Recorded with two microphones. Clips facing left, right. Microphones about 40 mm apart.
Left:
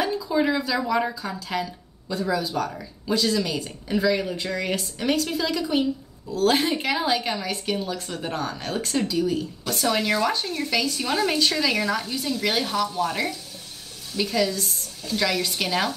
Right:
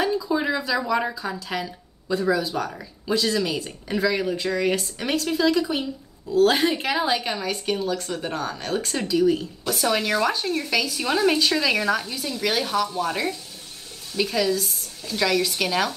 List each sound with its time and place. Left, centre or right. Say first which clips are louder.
0.0 s speech: even; centre